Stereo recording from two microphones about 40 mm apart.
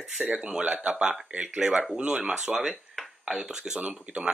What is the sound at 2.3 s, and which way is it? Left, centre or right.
Speech, centre.